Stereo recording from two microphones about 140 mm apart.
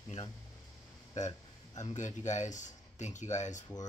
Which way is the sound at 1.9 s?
60° left (ahead or behind).